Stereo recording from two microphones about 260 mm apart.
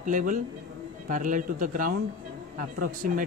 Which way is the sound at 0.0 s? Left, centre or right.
Right.